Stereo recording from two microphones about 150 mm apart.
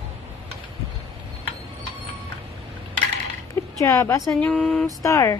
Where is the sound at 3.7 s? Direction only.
20° left (ahead or behind).